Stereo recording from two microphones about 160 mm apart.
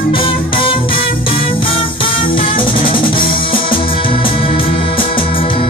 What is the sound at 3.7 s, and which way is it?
Music, 35° left (ahead or behind).